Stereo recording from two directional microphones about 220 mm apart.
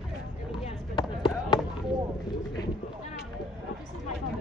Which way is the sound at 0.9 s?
20° left (ahead or behind).